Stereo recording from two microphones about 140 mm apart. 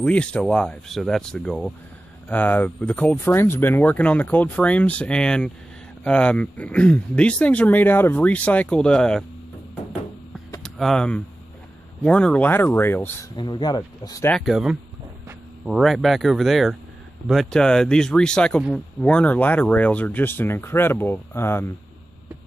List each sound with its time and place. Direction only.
0.0 s speech: 10° left (ahead or behind)
10.6 s speech: centre (ahead or behind)
13.4 s speech: 30° left (ahead or behind)
14.4 s speech: 5° right (ahead or behind); by 21.7 s 20° left (ahead or behind)